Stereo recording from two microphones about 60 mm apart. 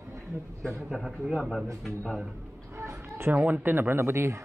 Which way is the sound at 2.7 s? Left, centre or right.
Right.